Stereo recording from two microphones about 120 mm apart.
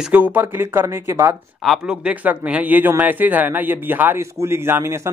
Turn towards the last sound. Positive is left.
turn(degrees=-20)  # may be behind; listen again after turning